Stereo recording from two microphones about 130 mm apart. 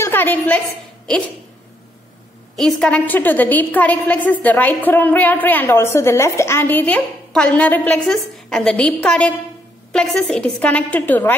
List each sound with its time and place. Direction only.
0.0 s a woman's voice: 15° left (ahead or behind)
2.8 s a woman's voice: 10° left (ahead or behind)